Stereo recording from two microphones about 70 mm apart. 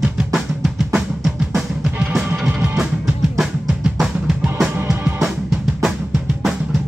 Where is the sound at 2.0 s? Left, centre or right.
Centre.